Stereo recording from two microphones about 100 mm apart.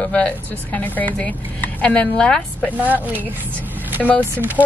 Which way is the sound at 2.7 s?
15° right (ahead or behind).